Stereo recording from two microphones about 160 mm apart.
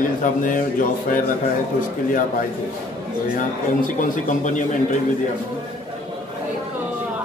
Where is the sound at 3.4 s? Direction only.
55° left (ahead or behind).